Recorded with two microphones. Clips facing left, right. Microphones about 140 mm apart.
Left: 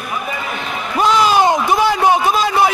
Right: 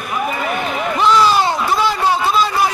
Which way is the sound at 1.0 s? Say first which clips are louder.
Left 1 dB; 15° left (ahead or behind).